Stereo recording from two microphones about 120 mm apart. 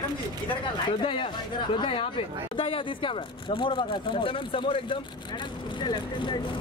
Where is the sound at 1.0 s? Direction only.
45° left (ahead or behind).